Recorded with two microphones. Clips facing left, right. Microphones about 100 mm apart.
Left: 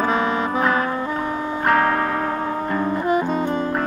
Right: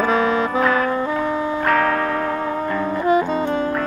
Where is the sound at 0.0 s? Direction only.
35° left (ahead or behind).